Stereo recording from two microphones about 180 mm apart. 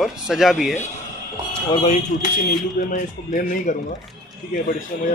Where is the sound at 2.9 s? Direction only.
50° left (ahead or behind).